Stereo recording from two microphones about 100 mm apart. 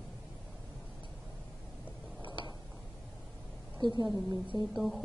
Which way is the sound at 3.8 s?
45° left (ahead or behind).